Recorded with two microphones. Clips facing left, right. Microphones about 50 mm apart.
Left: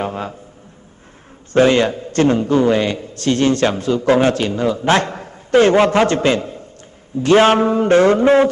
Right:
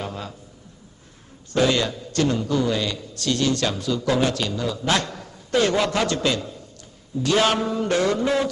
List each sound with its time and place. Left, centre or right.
0.0 s a man's voice: left
1.5 s a man's voice: left